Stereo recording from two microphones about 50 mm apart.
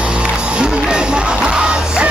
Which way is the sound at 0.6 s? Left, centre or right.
Centre.